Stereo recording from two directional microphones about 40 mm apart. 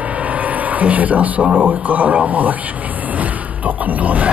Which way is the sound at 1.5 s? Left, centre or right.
Right.